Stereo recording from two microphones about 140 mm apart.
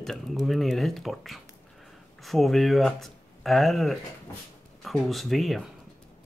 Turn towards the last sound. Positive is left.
turn(degrees=0)  # may be behind; listen again after turning